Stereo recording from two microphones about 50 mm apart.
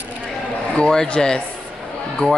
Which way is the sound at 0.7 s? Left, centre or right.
Centre.